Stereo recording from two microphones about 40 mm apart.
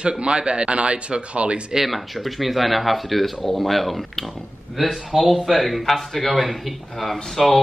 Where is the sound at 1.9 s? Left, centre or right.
Centre.